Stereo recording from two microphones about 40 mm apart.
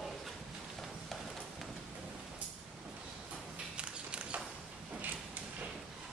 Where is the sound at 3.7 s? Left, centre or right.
Right.